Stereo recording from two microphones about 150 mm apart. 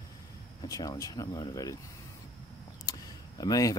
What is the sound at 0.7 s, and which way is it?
Speech, 25° left (ahead or behind).